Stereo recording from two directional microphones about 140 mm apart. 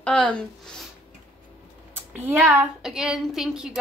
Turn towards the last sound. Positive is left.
turn(degrees=-5)  # may be behind; listen again after turning